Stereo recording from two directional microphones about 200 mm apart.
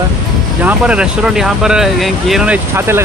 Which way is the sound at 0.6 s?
5° right (ahead or behind).